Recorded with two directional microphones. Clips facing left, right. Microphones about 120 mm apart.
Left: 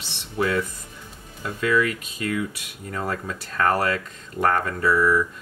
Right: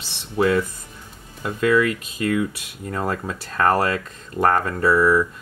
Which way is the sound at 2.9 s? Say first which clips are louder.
Right 3 dB; 35° right (ahead or behind).